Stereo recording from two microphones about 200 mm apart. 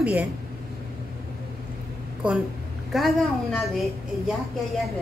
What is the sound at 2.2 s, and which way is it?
A woman's voice, 5° right (ahead or behind).